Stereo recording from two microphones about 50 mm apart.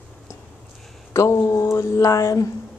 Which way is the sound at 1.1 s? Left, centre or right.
Left.